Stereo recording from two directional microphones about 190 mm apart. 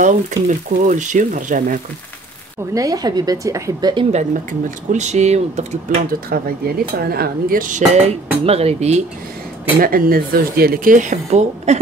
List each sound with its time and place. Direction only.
0.0 s speech: 40° right (ahead or behind)
2.7 s speech: 20° right (ahead or behind); by 5.8 s 35° right (ahead or behind)
6.3 s speech: 55° right (ahead or behind); by 9.0 s 35° right (ahead or behind)
9.8 s speech: 50° right (ahead or behind)